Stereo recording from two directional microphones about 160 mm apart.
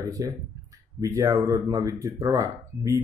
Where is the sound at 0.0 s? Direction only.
20° right (ahead or behind).